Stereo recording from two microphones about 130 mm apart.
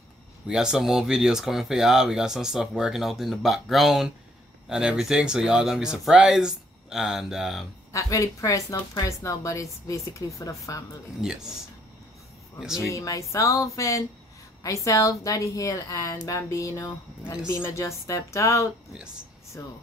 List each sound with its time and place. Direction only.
0.5 s speech: 5° right (ahead or behind)
7.9 s a woman's voice: 25° left (ahead or behind)
11.1 s speech: 5° right (ahead or behind)
12.9 s a woman's voice: 25° left (ahead or behind)